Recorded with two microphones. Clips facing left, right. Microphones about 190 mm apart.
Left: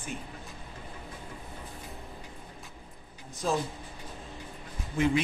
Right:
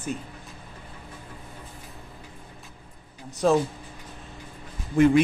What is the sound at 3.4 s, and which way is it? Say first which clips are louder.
Speech: right 9 dB; 65° right (ahead or behind).